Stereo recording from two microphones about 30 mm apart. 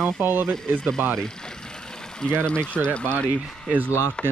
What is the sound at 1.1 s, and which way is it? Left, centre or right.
Vehicle, left.